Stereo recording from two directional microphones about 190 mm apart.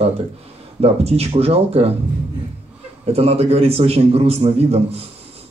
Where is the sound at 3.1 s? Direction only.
30° right (ahead or behind).